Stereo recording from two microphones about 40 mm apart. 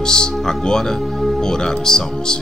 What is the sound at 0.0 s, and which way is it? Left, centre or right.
Speech, centre.